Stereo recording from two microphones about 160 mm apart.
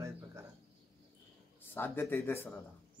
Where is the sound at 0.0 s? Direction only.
15° right (ahead or behind).